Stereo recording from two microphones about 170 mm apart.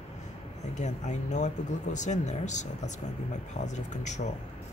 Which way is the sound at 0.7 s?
45° left (ahead or behind).